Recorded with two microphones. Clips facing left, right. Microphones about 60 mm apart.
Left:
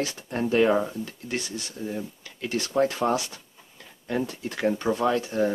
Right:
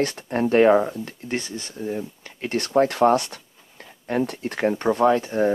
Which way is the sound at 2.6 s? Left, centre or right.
Right.